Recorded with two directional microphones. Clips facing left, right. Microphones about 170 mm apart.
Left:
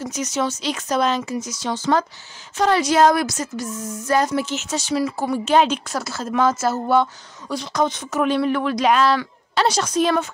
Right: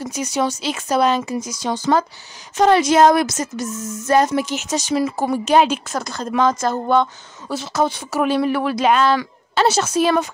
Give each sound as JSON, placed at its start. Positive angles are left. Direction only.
{"t": 0.1, "sound": "a woman's voice", "side_deg": -10}
{"t": 3.6, "sound": "speech", "side_deg": -45}
{"t": 3.9, "sound": "a woman's voice", "side_deg": -25}